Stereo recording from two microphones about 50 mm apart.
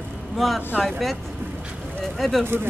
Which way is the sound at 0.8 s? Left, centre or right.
Centre.